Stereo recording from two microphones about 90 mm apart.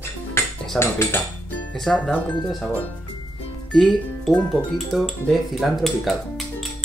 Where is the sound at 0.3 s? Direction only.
25° left (ahead or behind).